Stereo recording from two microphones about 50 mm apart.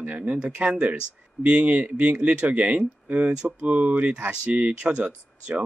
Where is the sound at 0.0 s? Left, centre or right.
Right.